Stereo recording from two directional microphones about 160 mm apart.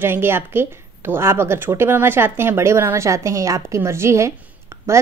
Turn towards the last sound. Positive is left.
turn(degrees=-20)  # may be behind; listen again after turning